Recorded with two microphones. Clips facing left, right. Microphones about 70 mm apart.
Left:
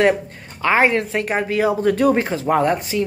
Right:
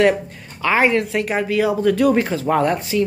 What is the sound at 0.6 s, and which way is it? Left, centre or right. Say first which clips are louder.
Speech: even; left.